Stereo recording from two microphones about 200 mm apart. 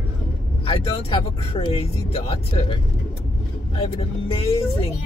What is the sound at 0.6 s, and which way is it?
Speech, 25° left (ahead or behind).